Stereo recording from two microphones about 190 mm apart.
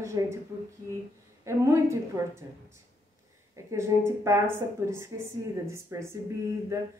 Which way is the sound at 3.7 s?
15° right (ahead or behind).